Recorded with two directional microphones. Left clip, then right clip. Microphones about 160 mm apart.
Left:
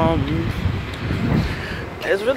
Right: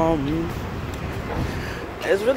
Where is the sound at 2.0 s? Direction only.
20° right (ahead or behind).